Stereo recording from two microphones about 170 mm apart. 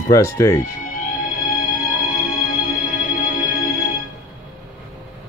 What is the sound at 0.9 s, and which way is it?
Music, 50° left (ahead or behind).